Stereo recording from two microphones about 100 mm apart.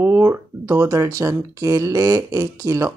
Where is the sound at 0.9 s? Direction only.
35° right (ahead or behind).